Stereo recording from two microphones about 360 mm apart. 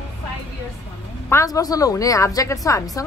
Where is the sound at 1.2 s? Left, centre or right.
Centre.